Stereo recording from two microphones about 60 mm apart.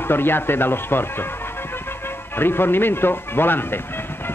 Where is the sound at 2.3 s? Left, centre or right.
Left.